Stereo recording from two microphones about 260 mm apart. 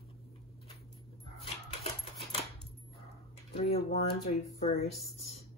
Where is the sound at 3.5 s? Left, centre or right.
Left.